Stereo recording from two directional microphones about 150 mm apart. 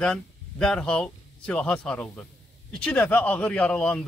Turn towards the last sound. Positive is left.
turn(degrees=5)  # may be behind; listen again after turning